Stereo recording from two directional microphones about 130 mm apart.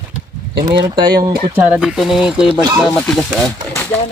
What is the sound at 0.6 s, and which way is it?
Speech, 35° right (ahead or behind).